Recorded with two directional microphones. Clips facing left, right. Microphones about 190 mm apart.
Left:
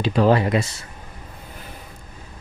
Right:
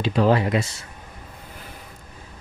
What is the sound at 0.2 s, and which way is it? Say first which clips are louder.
Speech: left 2 dB; 40° left (ahead or behind).